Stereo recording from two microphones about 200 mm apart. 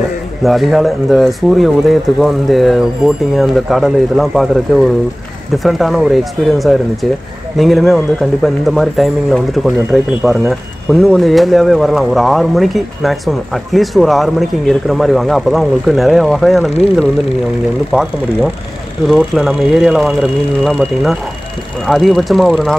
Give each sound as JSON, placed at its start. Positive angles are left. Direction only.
{"t": 0.4, "sound": "speech", "side_deg": 0}
{"t": 19.0, "sound": "speech", "side_deg": 0}